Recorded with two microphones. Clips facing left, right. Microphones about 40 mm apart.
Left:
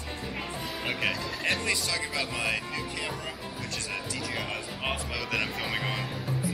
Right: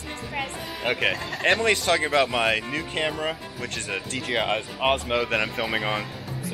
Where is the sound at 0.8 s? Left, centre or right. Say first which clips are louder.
Right 6 dB; right.